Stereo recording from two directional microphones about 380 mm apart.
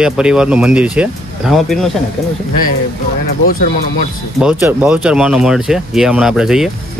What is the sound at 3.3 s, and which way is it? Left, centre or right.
Speech, left.